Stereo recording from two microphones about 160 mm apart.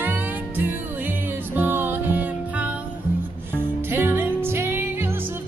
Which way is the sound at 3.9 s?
15° right (ahead or behind).